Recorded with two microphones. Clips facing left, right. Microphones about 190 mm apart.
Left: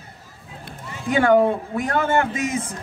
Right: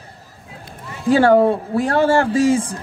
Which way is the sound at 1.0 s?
30° right (ahead or behind).